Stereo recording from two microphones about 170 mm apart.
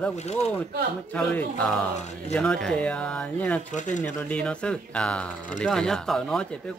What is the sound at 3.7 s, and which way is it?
Speech, 45° left (ahead or behind).